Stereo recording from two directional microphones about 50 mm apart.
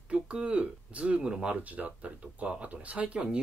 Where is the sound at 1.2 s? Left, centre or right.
Centre.